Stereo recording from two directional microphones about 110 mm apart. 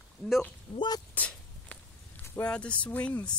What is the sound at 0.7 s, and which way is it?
Speech, 35° left (ahead or behind).